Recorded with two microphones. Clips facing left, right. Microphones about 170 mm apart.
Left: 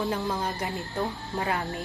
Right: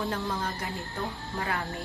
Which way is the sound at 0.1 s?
20° left (ahead or behind).